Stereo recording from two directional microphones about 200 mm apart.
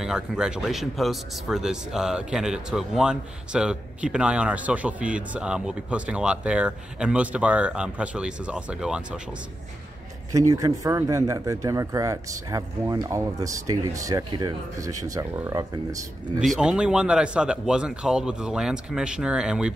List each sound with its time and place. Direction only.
0.0 s speech: 5° right (ahead or behind)
10.5 s speech: 15° right (ahead or behind)
16.3 s speech: 5° right (ahead or behind)